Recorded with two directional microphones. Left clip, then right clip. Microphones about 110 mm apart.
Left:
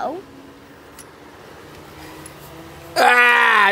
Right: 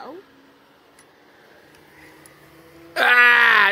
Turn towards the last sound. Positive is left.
turn(degrees=0)  # may be behind; listen again after turning